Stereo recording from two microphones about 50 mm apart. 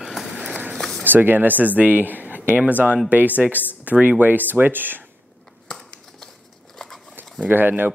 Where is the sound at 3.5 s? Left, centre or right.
Left.